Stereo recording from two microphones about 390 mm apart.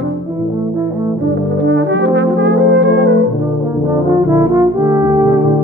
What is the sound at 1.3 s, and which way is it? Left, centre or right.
Brass instrument, right.